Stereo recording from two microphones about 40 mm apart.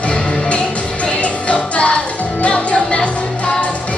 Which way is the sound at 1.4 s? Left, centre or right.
Left.